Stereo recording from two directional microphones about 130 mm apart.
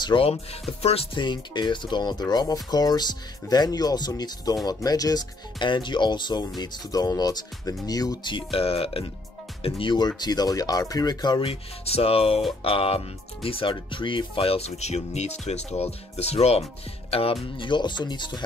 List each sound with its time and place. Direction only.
0.0 s speech: 45° left (ahead or behind)
1.1 s speech: 35° left (ahead or behind)
9.8 s speech: 35° left (ahead or behind)
11.8 s speech: 50° left (ahead or behind)
17.6 s speech: 35° left (ahead or behind)